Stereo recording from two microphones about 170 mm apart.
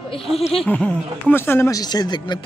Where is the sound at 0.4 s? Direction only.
35° left (ahead or behind).